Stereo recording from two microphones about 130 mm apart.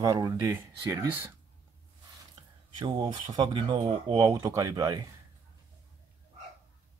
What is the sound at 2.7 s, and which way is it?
Speech, 35° right (ahead or behind).